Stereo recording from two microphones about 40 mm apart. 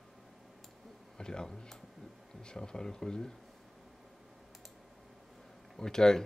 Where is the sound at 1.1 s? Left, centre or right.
Centre.